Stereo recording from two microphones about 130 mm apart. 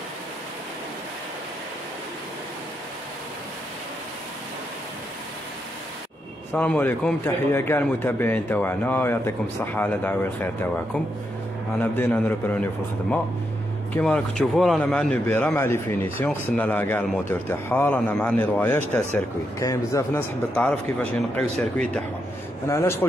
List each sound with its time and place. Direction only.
6.5 s speech: 10° left (ahead or behind)
11.8 s speech: 15° left (ahead or behind)
14.0 s a man's voice: 5° left (ahead or behind)
20.5 s speech: 10° left (ahead or behind)
22.7 s a man's voice: 20° left (ahead or behind)